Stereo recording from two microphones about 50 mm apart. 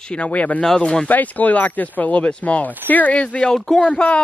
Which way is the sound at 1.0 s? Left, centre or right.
Left.